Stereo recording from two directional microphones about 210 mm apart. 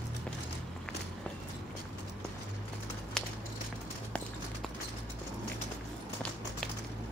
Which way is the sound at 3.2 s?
Centre (ahead or behind).